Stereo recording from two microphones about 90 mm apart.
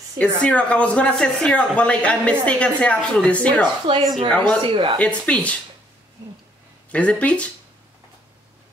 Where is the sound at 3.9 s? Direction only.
70° right (ahead or behind).